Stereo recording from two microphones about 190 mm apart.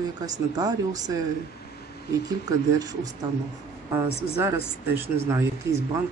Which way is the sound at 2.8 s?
20° right (ahead or behind).